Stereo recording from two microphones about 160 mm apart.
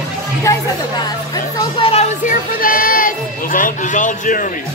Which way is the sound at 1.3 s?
35° left (ahead or behind).